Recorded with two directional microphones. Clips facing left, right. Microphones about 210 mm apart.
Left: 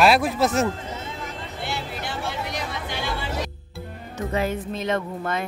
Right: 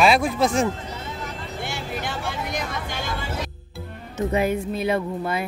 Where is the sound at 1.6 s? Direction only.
50° right (ahead or behind).